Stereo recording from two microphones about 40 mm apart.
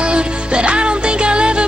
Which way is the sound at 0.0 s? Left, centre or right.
Right.